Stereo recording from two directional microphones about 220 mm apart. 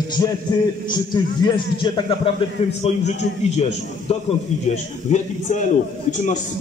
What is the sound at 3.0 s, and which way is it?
Speech, 30° left (ahead or behind).